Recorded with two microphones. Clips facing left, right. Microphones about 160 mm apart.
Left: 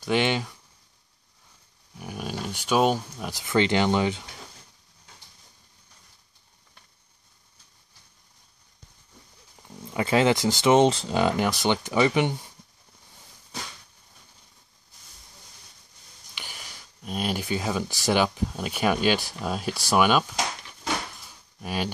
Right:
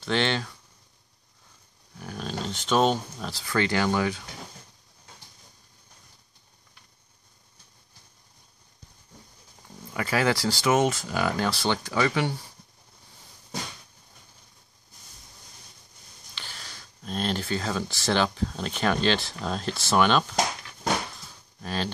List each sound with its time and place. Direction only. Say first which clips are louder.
0.0 s speech: left 2 dB; 15° left (ahead or behind)
2.0 s speech: even; 10° left (ahead or behind)
9.8 s speech: left 4 dB; 20° left (ahead or behind)
16.3 s speech: left 1 dB; 15° left (ahead or behind)
21.5 s speech: left 1 dB; 10° left (ahead or behind)